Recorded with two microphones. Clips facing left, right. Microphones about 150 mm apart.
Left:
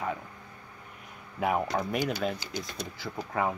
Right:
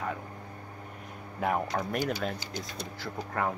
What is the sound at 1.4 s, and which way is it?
Speech, 5° left (ahead or behind).